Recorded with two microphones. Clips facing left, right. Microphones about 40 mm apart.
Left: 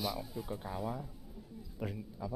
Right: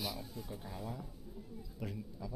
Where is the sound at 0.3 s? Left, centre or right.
Centre.